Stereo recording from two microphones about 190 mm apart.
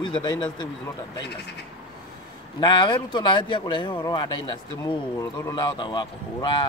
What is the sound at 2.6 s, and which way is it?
Speech, 25° left (ahead or behind).